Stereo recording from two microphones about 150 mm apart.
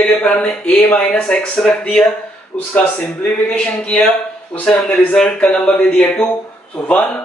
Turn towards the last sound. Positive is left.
turn(degrees=5)  # may be behind; listen again after turning